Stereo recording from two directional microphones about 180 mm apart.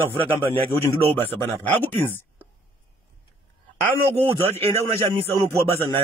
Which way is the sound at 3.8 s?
10° left (ahead or behind).